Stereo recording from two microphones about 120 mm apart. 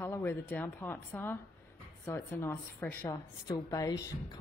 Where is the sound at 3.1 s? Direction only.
30° left (ahead or behind).